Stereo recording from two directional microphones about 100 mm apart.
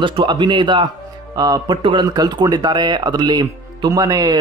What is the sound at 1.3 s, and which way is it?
Speech, 40° right (ahead or behind).